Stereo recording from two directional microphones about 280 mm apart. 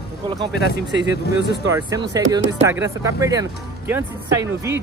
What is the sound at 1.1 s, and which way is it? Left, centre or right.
Speech, left.